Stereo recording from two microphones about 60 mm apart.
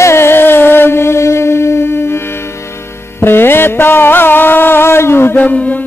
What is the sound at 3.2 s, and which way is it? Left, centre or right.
Music, left.